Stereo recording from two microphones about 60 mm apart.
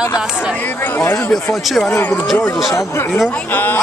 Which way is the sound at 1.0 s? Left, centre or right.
Left.